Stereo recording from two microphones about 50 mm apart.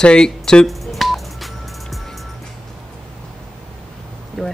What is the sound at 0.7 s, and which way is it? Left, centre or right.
Telephone dialing, centre.